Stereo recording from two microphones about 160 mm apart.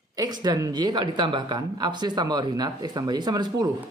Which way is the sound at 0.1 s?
25° right (ahead or behind).